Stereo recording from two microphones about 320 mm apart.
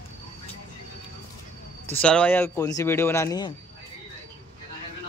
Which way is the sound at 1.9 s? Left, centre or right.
Centre.